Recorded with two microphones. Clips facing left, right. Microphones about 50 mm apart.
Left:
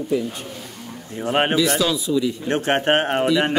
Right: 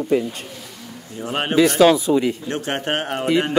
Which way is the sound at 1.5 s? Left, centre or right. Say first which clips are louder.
Right 6 dB; right.